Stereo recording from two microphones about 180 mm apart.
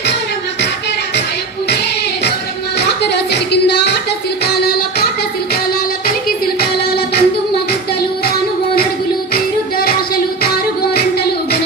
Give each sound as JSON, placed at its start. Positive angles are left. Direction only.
{"t": 2.8, "sound": "a sound", "side_deg": 70}
{"t": 6.0, "sound": "music", "side_deg": 60}
{"t": 9.3, "sound": "music", "side_deg": 55}